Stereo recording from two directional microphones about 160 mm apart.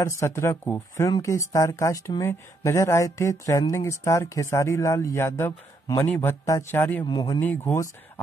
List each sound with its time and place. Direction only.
0.0 s speech: 20° left (ahead or behind)
7.1 s speech: 25° left (ahead or behind)
7.3 s speech: 10° left (ahead or behind)